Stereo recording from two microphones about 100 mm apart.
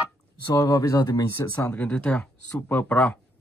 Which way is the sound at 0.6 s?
35° left (ahead or behind).